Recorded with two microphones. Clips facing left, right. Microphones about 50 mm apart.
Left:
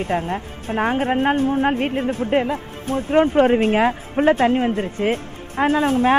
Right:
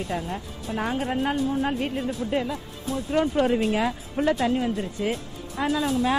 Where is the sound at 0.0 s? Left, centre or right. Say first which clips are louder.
Left 7 dB; left.